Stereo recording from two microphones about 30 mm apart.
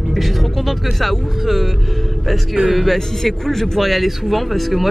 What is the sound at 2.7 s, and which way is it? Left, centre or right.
Speech, centre.